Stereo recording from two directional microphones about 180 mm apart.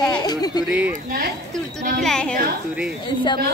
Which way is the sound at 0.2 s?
20° left (ahead or behind).